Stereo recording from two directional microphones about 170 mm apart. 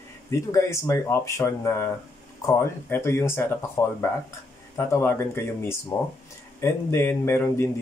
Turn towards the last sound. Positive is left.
turn(degrees=15)  # may be behind; listen again after turning